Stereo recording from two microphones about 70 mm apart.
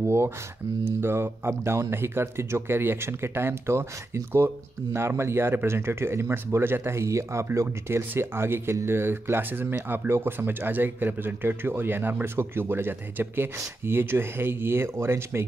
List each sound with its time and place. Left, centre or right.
0.0 s speech: right